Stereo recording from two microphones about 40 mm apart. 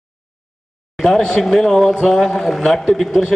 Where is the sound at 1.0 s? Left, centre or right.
Centre.